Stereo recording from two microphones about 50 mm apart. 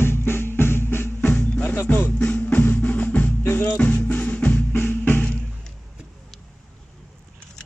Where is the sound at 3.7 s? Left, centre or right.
Left.